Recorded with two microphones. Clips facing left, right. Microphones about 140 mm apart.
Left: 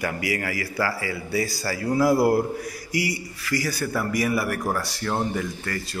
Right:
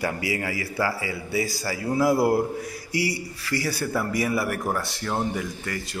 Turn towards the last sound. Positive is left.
turn(degrees=-20)  # may be behind; listen again after turning